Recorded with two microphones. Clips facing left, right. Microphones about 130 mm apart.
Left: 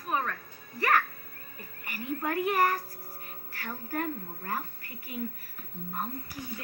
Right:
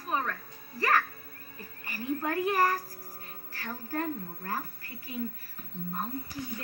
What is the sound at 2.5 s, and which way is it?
Speech, 15° left (ahead or behind).